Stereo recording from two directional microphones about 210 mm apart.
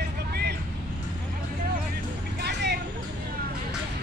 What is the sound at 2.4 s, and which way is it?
Vehicle, 50° right (ahead or behind).